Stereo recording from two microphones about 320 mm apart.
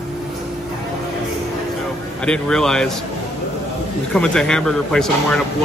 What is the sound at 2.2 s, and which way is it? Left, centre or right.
Speech, centre.